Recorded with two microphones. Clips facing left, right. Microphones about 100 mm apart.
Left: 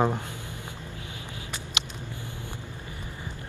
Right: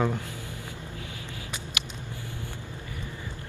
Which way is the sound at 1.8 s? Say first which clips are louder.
Left 4 dB; 25° left (ahead or behind).